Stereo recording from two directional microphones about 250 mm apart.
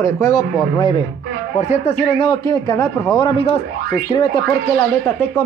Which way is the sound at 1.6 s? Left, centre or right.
Left.